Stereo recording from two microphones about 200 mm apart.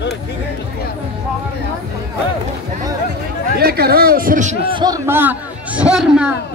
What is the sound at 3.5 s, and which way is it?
A man's voice, 50° right (ahead or behind).